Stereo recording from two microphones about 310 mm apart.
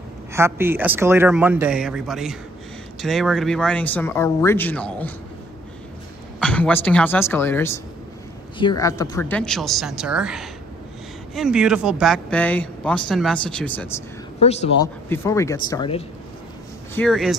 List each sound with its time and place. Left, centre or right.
0.3 s speech: centre
6.4 s speech: centre
14.4 s speech: centre
14.8 s speech: centre
16.9 s speech: centre